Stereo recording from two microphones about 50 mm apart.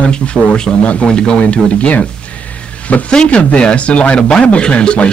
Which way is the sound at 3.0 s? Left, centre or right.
Centre.